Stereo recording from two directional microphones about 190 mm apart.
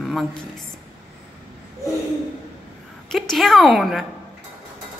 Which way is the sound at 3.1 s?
Centre (ahead or behind).